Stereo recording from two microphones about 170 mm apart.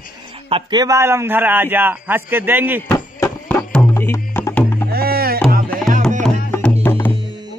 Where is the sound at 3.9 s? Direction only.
15° left (ahead or behind).